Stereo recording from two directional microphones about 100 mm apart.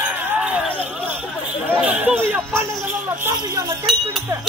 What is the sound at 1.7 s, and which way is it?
Chatter, 20° right (ahead or behind).